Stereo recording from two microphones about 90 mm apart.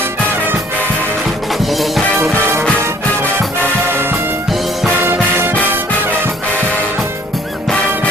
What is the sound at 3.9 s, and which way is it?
Music, 25° right (ahead or behind).